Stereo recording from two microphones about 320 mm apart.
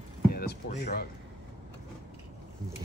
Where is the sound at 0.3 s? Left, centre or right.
Left.